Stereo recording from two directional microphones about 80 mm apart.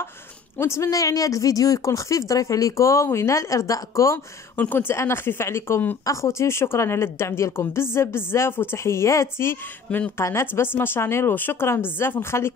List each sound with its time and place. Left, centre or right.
0.6 s a woman's voice: left
4.6 s a woman's voice: left
9.8 s speech: centre
10.1 s a woman's voice: left